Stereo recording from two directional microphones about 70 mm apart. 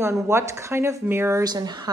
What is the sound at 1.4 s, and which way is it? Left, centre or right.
Speech, right.